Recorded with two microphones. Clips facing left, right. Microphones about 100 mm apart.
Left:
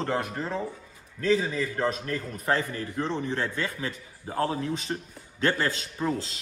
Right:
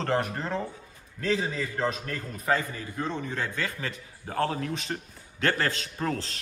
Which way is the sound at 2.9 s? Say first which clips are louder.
Left 2 dB; 20° left (ahead or behind).